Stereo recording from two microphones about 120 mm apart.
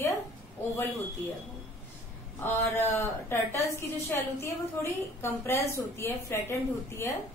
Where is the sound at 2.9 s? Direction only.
20° left (ahead or behind).